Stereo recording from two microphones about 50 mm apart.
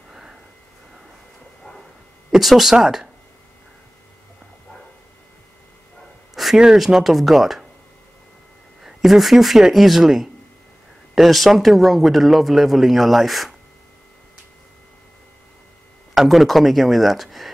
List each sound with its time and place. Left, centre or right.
0.1 s a sound: centre
2.3 s speech: centre
6.3 s a sound: centre
6.6 s speech: centre
8.8 s speech: centre
16.2 s speech: centre